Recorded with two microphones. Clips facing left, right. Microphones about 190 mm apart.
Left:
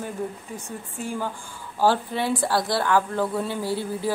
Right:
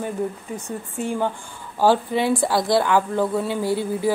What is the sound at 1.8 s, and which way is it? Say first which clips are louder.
Speech: right 4 dB; 15° right (ahead or behind).